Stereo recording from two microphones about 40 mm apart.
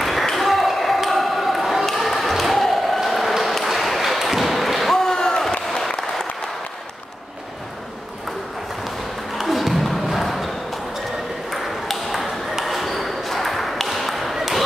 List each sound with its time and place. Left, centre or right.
0.0 s ping: centre
2.0 s a sound: centre
3.7 s ping: centre
4.9 s slam: centre
5.9 s applause: centre
9.5 s a sound: centre
11.5 s ping: centre